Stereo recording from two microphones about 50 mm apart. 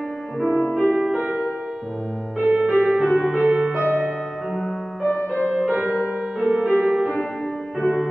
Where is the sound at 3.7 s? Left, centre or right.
Right.